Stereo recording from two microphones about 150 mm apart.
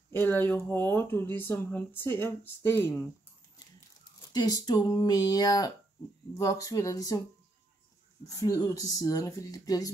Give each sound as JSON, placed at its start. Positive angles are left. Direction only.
{"t": 0.1, "sound": "speech", "side_deg": 15}
{"t": 4.3, "sound": "speech", "side_deg": 25}
{"t": 8.3, "sound": "speech", "side_deg": 25}